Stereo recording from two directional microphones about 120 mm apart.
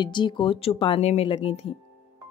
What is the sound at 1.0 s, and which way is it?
Speech, 65° left (ahead or behind).